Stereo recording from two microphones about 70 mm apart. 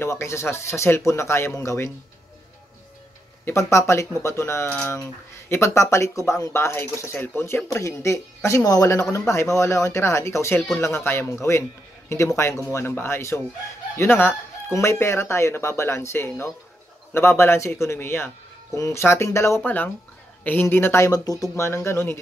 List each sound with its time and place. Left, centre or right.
0.0 s speech: left
3.4 s speech: left
8.6 s speech: left
9.3 s speech: left
19.6 s speech: left
20.6 s speech: left
21.1 s speech: left
21.6 s speech: left